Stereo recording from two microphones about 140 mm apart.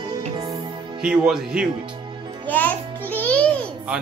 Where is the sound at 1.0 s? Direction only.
5° right (ahead or behind).